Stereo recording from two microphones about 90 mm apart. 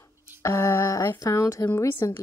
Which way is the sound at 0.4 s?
30° left (ahead or behind).